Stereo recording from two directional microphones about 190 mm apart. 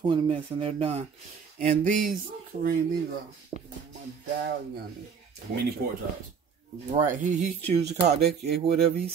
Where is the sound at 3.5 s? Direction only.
35° right (ahead or behind).